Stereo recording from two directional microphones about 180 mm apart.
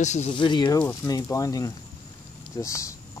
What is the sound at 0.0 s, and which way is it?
Speech, 40° left (ahead or behind).